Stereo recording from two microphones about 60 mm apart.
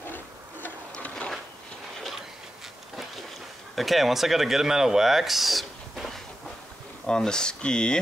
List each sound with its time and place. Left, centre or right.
0.0 s tick-tock: left
3.7 s speech: centre
7.1 s speech: centre